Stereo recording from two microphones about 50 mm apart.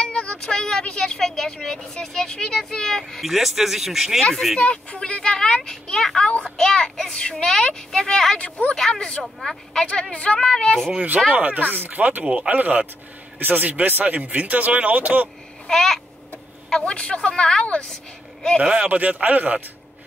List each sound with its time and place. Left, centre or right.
0.0 s speech: left
3.2 s speech: centre
4.6 s a child's voice: left
8.4 s speech: left
8.7 s a child's voice: centre
10.1 s a child's voice: left
11.3 s speech: right
12.2 s speech: right
15.7 s a child's voice: centre
16.7 s speech: centre
18.6 s speech: centre
18.9 s speech: right